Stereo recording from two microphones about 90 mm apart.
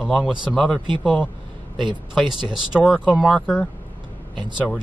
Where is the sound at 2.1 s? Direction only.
5° right (ahead or behind).